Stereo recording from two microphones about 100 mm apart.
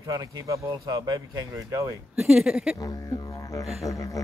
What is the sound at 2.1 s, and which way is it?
Speech, 10° right (ahead or behind).